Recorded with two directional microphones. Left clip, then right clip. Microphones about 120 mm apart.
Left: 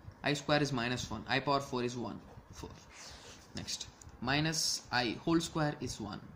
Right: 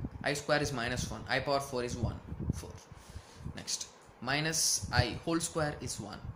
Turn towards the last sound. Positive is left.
turn(degrees=40)  # may be behind; listen again after turning